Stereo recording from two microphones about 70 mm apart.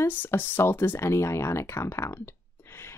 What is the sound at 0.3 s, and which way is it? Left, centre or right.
Speech, left.